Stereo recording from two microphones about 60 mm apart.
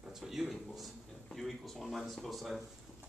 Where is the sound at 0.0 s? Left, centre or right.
Centre.